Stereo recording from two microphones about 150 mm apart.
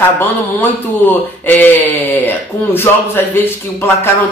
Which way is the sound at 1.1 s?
10° left (ahead or behind).